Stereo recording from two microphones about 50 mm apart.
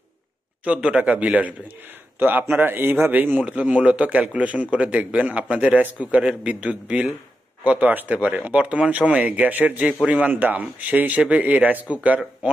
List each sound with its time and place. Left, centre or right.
0.7 s a man's voice: right
2.1 s a man's voice: right
3.4 s a man's voice: right
7.6 s a man's voice: right